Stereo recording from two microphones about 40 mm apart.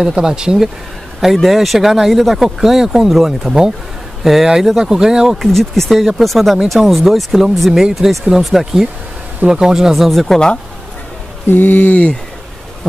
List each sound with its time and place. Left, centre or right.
0.0 s speech: centre
1.2 s speech: centre
4.7 s speech: centre
5.4 s speech: centre
9.5 s speech: centre
9.9 s speech: centre
11.4 s a sound: left